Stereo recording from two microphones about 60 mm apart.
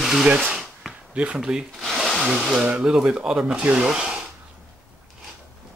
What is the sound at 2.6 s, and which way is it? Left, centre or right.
Speech, centre.